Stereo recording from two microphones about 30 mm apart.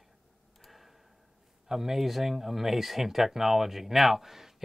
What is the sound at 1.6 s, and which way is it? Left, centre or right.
A man's voice, centre.